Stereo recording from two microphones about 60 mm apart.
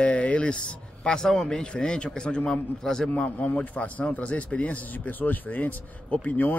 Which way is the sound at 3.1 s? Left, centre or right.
Left.